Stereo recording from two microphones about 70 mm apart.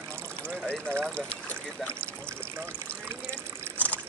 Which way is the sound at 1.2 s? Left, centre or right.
Centre.